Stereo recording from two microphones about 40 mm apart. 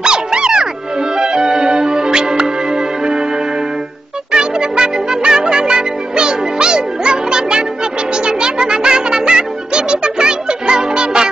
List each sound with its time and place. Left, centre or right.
0.0 s music: centre
4.3 s music: right